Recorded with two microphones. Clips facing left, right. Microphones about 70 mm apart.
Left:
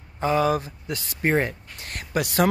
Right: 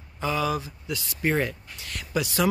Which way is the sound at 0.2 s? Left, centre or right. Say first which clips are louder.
Left 5 dB; left.